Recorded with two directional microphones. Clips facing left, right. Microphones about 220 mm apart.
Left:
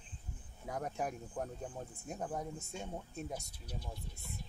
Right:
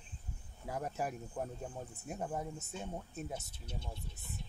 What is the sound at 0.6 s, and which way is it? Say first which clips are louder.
Speech: even; 5° right (ahead or behind).